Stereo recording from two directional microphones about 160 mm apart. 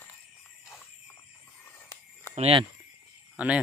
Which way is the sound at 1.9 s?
15° left (ahead or behind).